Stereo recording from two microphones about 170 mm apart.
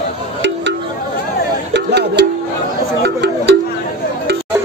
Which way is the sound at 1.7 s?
90° right.